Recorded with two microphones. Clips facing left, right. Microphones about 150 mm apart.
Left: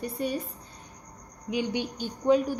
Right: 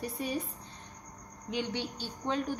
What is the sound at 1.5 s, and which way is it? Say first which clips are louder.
Speech: left 5 dB; 10° left (ahead or behind).